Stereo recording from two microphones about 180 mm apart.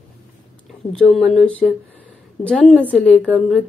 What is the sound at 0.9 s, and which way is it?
A woman's voice, centre (ahead or behind).